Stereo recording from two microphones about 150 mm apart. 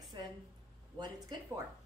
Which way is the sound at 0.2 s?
30° right (ahead or behind).